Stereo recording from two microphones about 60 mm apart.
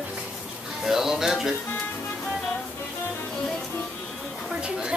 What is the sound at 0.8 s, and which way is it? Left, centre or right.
Speech, centre.